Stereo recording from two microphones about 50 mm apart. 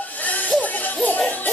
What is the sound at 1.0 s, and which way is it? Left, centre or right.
Music, left.